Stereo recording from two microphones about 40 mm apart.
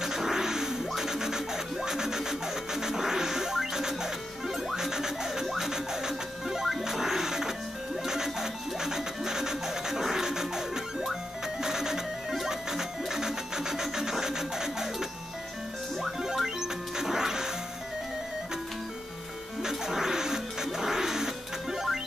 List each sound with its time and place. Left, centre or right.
0.0 s scratch: centre
4.6 s music: centre
19.6 s music: centre